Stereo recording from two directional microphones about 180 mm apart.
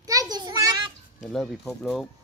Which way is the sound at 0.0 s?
20° right (ahead or behind).